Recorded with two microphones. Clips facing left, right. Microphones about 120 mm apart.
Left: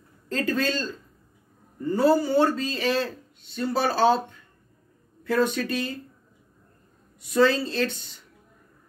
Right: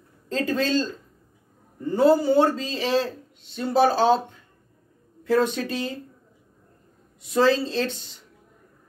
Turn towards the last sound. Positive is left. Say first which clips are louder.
# right 1 dB
turn(degrees=-25)  # may be behind; listen again after turning